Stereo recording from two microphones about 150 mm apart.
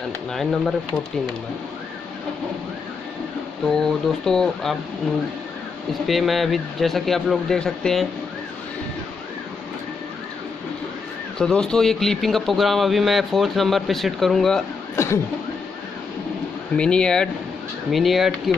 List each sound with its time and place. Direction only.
0.3 s speech: centre (ahead or behind)
3.6 s speech: 5° left (ahead or behind)
6.0 s speech: centre (ahead or behind)
11.3 s speech: 5° left (ahead or behind)
15.0 s a sound: 15° left (ahead or behind)
16.7 s speech: 5° left (ahead or behind)